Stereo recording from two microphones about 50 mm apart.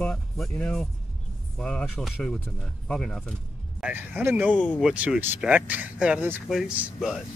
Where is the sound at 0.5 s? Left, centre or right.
Centre.